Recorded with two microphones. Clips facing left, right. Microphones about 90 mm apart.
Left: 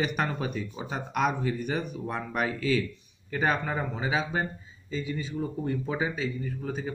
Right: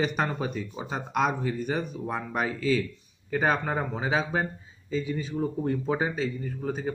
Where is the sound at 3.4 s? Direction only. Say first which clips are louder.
Right 2 dB; 45° right (ahead or behind).